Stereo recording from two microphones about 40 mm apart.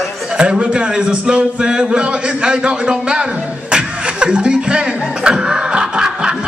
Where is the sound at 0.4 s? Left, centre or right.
Right.